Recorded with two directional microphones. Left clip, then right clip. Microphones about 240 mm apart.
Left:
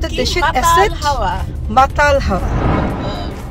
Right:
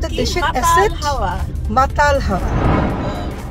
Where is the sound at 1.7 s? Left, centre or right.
Centre.